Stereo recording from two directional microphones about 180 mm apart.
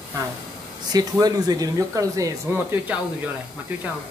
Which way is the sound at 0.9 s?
20° right (ahead or behind).